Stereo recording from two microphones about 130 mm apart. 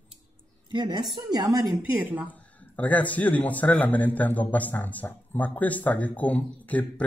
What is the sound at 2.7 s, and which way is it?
A man's voice, 10° left (ahead or behind).